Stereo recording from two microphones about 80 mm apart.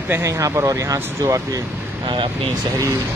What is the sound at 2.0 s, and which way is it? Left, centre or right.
Speech, right.